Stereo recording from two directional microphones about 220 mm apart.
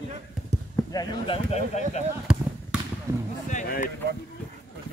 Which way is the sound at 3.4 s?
40° left (ahead or behind).